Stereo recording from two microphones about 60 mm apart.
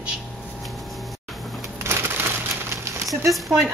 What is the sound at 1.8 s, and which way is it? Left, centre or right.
Typewriter, right.